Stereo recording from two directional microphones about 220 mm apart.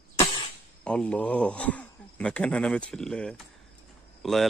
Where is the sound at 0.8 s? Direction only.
5° left (ahead or behind).